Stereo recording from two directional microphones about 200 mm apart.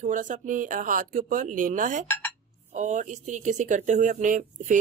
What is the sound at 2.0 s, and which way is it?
Speech, 10° left (ahead or behind).